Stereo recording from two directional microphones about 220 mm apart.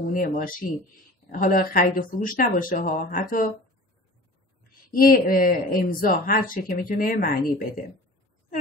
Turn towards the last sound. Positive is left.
turn(degrees=40)  # may be behind; listen again after turning